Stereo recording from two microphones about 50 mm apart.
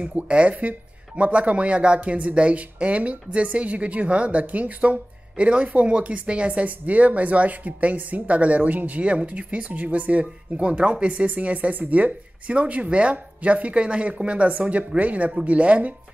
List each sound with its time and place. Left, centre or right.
0.0 s speech: right